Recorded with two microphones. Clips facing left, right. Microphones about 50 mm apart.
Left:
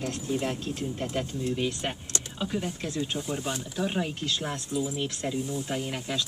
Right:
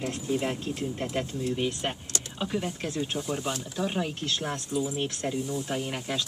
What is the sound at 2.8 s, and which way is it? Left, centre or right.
Speech, right.